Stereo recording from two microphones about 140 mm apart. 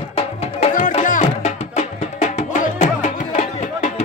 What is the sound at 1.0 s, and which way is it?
Music, 65° left (ahead or behind).